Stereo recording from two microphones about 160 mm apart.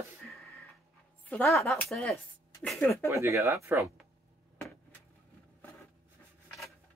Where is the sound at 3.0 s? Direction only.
20° right (ahead or behind).